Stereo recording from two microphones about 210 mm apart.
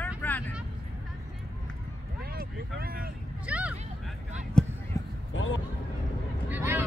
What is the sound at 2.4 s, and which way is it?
Vehicle, 45° right (ahead or behind).